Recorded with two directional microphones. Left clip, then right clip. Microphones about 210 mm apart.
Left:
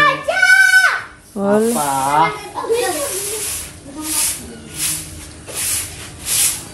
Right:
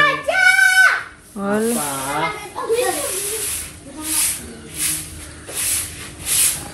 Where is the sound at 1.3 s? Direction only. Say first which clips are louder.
Left 6 dB; 20° left (ahead or behind).